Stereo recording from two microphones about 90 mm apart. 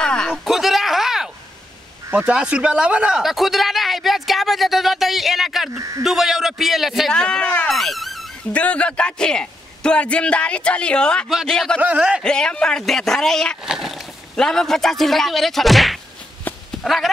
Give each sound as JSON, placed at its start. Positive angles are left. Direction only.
{"t": 0.0, "sound": "a sound", "side_deg": 10}
{"t": 0.3, "sound": "a sound", "side_deg": -5}
{"t": 2.1, "sound": "speech", "side_deg": -15}
{"t": 5.7, "sound": "speech", "side_deg": -40}
{"t": 6.0, "sound": "speech", "side_deg": -5}
{"t": 7.2, "sound": "speech", "side_deg": 10}
{"t": 8.5, "sound": "a man's voice", "side_deg": 15}
{"t": 11.8, "sound": "a man's voice", "side_deg": -15}
{"t": 12.2, "sound": "a man's voice", "side_deg": 10}
{"t": 16.5, "sound": "a sound", "side_deg": 20}
{"t": 16.8, "sound": "speech", "side_deg": 0}